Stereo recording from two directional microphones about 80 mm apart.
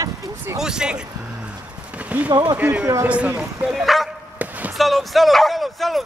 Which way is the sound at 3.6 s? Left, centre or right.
Centre.